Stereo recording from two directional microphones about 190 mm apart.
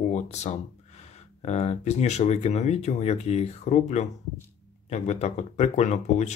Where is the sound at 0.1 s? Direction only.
35° left (ahead or behind).